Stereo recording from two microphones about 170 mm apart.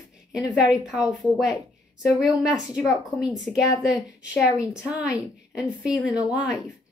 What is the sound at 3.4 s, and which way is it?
Speech, centre (ahead or behind).